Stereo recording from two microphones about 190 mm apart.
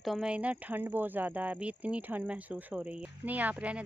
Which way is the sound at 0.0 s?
Centre (ahead or behind).